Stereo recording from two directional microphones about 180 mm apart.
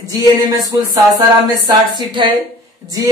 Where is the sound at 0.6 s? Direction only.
20° right (ahead or behind).